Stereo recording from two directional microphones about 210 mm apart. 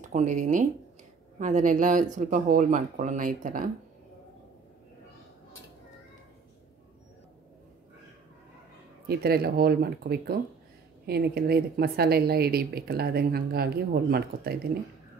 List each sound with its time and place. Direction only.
0.1 s speech: 35° right (ahead or behind)
9.0 s speech: 45° right (ahead or behind)